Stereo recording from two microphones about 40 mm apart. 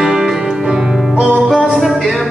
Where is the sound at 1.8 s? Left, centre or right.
Centre.